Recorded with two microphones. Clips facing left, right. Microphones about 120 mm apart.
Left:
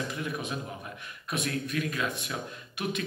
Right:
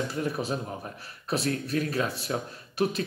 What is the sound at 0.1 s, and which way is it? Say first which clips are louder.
Speech: right 5 dB; 35° right (ahead or behind).